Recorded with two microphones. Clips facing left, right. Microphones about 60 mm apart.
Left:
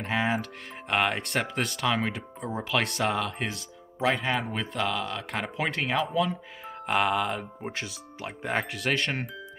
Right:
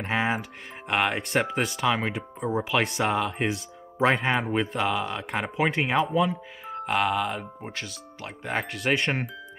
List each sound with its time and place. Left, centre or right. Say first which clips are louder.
0.0 s speech: right 1 dB; centre
4.0 s speech: right 4 dB; right
4.5 s speech: right 4 dB; centre
7.7 s speech: left 1 dB; centre
8.3 s speech: even; centre